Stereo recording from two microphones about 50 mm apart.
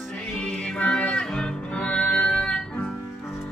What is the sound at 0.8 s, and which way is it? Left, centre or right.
Music, left.